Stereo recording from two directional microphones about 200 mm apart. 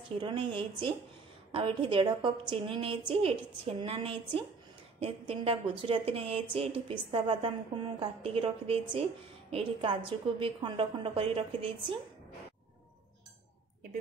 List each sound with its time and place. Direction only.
0.1 s a woman's voice: 25° right (ahead or behind)